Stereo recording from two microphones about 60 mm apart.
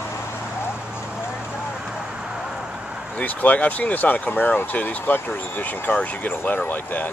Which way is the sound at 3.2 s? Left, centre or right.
Left.